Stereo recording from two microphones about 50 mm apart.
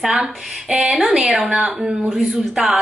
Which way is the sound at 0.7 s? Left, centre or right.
Centre.